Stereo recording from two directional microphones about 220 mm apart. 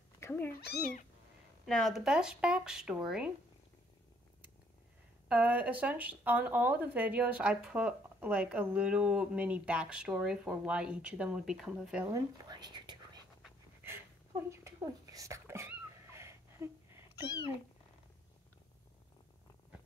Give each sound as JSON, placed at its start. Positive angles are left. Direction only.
{"t": 0.2, "sound": "cat", "side_deg": 10}
{"t": 0.5, "sound": "speech", "side_deg": 45}
{"t": 1.7, "sound": "speech", "side_deg": 0}
{"t": 5.3, "sound": "speech", "side_deg": -5}
{"t": 12.4, "sound": "whispering", "side_deg": -20}
{"t": 13.4, "sound": "a sound", "side_deg": -10}